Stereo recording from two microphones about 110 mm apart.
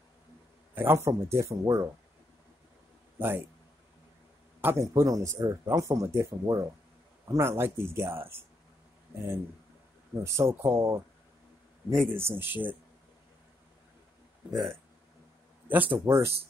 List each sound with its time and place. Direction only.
0.7 s speech: 25° right (ahead or behind)
3.2 s speech: 20° right (ahead or behind)
4.6 s speech: 20° right (ahead or behind)
10.2 s speech: 25° right (ahead or behind)
12.1 s speech: 20° right (ahead or behind)
14.5 s speech: centre (ahead or behind)
15.7 s speech: 15° right (ahead or behind)